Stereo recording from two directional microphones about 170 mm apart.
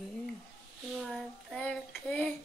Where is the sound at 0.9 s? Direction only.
Centre (ahead or behind).